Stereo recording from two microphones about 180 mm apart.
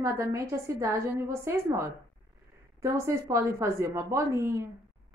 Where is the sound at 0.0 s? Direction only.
15° right (ahead or behind).